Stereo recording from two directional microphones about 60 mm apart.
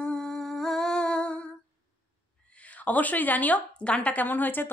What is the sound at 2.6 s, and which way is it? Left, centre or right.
A woman's voice, left.